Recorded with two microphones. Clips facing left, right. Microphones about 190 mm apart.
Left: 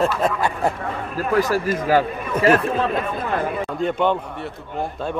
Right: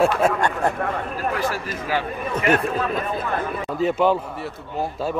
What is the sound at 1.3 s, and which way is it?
Speech, 45° left (ahead or behind).